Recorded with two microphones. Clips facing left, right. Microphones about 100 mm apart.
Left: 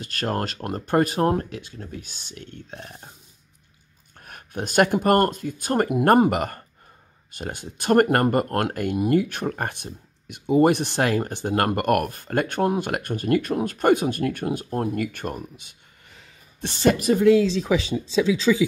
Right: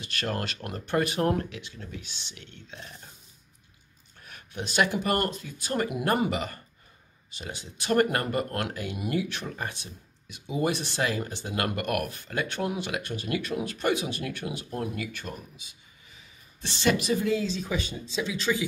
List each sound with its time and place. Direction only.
0.0 s speech: 40° left (ahead or behind)
4.3 s speech: 50° left (ahead or behind); by 16.3 s 65° left (ahead or behind)
16.6 s speech: 45° left (ahead or behind)
17.3 s speech: 90° left